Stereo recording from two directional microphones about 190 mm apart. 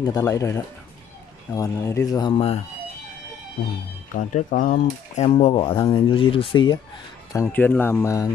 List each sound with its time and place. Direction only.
0.0 s speech: 20° left (ahead or behind)
4.1 s speech: 40° left (ahead or behind); by 6.8 s 25° left (ahead or behind)
7.3 s speech: 10° left (ahead or behind)